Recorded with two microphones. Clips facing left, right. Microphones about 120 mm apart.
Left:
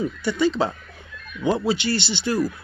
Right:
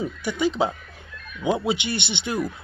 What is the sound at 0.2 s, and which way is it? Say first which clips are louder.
Speech: left 1 dB; 15° right (ahead or behind).